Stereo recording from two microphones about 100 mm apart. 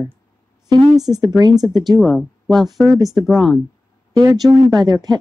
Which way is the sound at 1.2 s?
45° right (ahead or behind).